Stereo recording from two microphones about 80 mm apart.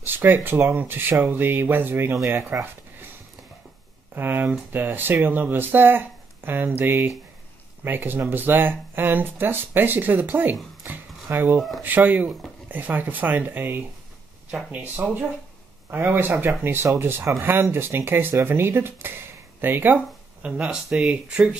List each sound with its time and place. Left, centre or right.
0.0 s speech: right
4.1 s speech: right
20.4 s speech: centre